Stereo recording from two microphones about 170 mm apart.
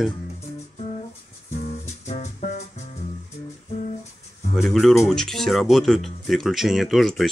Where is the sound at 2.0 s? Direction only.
40° left (ahead or behind).